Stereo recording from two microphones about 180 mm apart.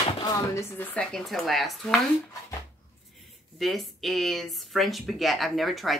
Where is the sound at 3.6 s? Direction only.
Centre (ahead or behind).